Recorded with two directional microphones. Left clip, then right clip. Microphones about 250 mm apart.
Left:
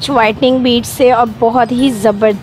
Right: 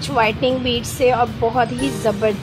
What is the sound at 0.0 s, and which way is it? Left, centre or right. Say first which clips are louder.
Speech: left 7 dB; left.